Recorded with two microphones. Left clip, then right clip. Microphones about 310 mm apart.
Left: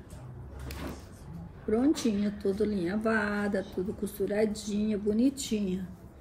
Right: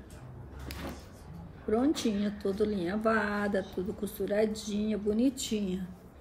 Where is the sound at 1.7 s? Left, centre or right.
Centre.